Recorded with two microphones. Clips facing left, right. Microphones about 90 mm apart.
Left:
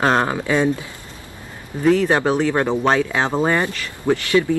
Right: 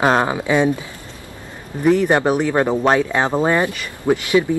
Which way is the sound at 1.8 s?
15° right (ahead or behind).